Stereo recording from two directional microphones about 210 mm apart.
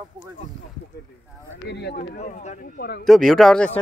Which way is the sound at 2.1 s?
35° left (ahead or behind).